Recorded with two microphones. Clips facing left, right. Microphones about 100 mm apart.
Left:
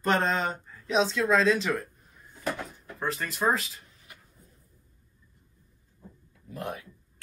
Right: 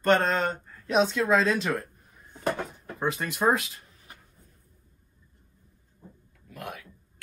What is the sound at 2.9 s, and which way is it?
Speech, 10° right (ahead or behind).